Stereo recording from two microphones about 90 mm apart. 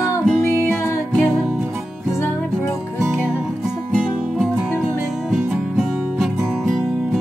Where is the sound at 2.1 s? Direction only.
30° left (ahead or behind).